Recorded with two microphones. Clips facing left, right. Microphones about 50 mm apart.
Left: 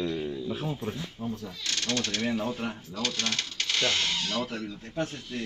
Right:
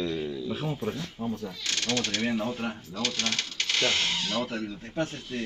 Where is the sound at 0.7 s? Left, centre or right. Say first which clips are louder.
Right 2 dB; centre.